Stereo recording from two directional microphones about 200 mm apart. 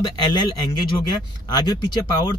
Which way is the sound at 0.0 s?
20° left (ahead or behind).